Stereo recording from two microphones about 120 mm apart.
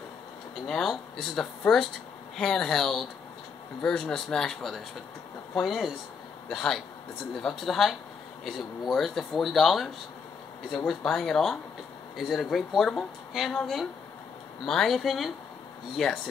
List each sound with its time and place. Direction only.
0.7 s speech: 5° left (ahead or behind)